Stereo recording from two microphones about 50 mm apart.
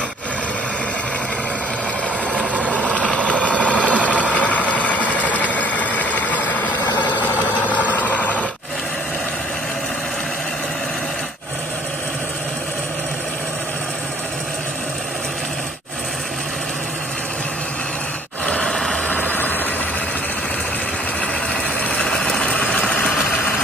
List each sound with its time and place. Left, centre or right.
2.3 s vehicle: right
2.9 s vehicle: left
18.4 s a sound: left
18.7 s vehicle: centre
19.0 s vehicle: left
21.9 s vehicle: centre
22.4 s vehicle: left